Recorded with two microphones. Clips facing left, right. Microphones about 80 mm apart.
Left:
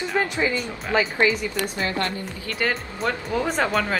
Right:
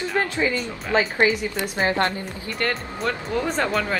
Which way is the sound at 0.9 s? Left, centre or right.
Right.